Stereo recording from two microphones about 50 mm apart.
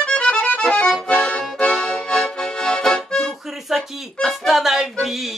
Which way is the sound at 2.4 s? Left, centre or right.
Centre.